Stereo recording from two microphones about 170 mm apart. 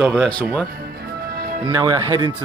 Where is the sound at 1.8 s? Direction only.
25° right (ahead or behind).